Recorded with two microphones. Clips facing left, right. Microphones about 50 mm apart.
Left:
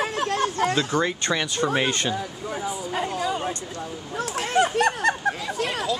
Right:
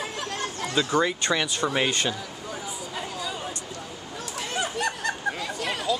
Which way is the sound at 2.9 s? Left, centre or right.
Left.